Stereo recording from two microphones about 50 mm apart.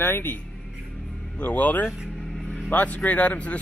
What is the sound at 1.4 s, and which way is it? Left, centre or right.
Speech, left.